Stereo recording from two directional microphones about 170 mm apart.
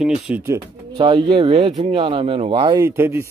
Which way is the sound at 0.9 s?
25° right (ahead or behind).